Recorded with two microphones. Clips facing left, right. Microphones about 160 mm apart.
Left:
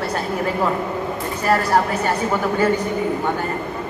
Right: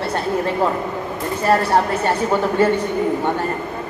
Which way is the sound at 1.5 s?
30° right (ahead or behind).